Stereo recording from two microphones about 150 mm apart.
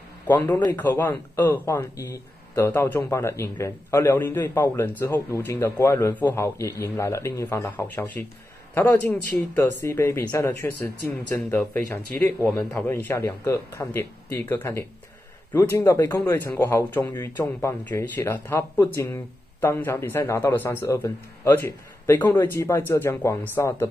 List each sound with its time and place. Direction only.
0.7 s a man's voice: 15° left (ahead or behind)
9.5 s a man's voice: 20° left (ahead or behind)